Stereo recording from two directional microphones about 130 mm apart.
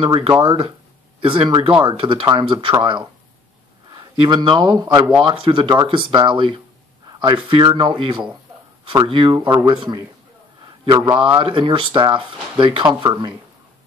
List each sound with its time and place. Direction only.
0.0 s speech: 40° right (ahead or behind)
5.2 s speech: 40° right (ahead or behind)
10.9 s speech: 35° right (ahead or behind)